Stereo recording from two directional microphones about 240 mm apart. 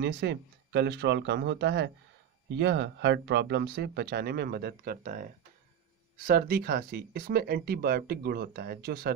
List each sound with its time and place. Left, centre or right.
0.0 s speech: right